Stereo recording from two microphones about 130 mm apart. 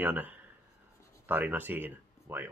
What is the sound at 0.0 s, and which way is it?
Speech, 15° right (ahead or behind).